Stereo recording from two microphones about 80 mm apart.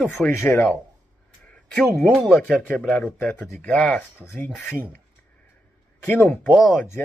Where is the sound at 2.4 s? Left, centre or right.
Centre.